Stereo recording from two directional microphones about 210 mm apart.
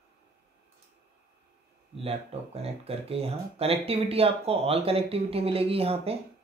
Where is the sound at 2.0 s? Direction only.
30° right (ahead or behind).